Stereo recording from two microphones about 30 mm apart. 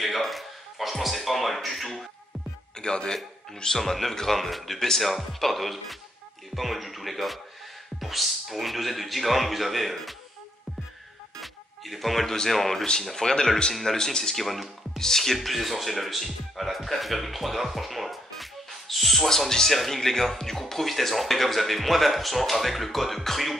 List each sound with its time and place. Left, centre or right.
0.0 s a sound: centre
2.8 s a man's voice: left
3.7 s speech: centre
4.4 s speech: centre
11.4 s music: centre
12.4 s speech: centre
13.2 s speech: centre
14.4 s speech: centre
15.0 s speech: centre
15.3 s speech: centre
19.2 s speech: centre